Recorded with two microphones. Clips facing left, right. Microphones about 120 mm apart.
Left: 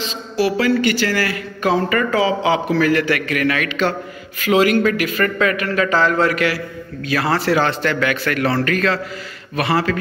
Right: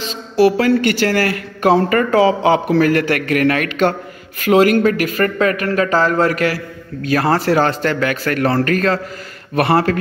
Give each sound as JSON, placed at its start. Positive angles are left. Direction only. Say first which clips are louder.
{"t": 0.0, "sound": "a man's voice", "louder": "right 6 dB", "side_deg": -50}
{"t": 9.6, "sound": "speech", "louder": "right 4 dB", "side_deg": -55}